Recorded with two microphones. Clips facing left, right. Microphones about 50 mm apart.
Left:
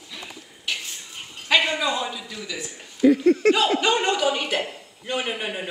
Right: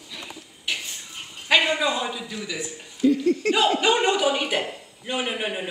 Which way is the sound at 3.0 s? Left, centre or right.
Left.